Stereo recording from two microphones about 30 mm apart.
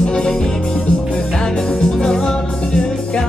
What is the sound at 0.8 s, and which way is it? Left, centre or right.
Music, left.